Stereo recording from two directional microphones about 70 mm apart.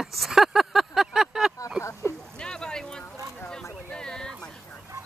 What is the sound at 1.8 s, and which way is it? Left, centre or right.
Speech, left.